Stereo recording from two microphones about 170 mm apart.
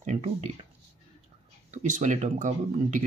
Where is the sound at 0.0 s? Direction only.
40° right (ahead or behind).